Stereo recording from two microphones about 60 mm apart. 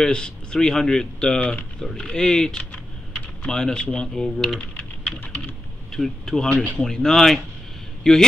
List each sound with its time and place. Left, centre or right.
0.0 s speech: centre
1.4 s speech: left
1.8 s speech: centre
5.4 s speech: centre